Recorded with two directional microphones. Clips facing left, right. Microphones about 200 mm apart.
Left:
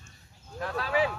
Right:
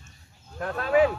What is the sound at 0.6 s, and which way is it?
Speech, 45° right (ahead or behind).